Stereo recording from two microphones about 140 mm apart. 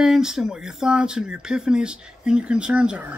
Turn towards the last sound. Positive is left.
turn(degrees=-5)  # may be behind; listen again after turning